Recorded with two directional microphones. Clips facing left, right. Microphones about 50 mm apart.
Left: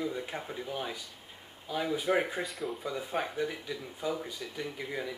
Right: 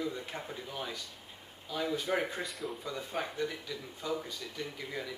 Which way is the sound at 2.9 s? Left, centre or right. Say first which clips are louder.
Left 3 dB; centre.